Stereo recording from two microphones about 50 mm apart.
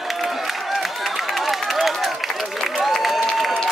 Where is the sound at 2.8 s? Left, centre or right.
Centre.